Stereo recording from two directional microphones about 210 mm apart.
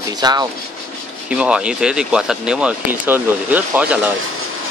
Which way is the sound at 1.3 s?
5° right (ahead or behind).